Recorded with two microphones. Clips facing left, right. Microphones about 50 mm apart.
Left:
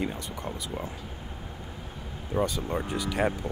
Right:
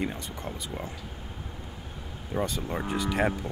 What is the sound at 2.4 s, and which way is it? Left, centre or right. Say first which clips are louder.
Speech: left 2 dB; centre.